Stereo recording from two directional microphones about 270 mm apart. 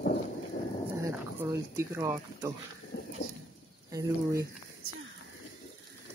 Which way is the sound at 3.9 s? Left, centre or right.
Centre.